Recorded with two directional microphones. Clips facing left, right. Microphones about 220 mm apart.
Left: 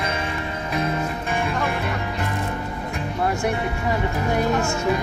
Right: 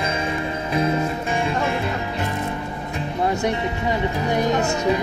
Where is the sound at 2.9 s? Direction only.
20° right (ahead or behind).